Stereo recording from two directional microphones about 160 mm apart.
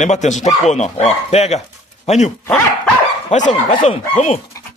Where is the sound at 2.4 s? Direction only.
10° left (ahead or behind).